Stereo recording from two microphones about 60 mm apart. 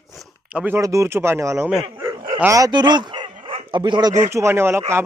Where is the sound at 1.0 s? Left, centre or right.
Right.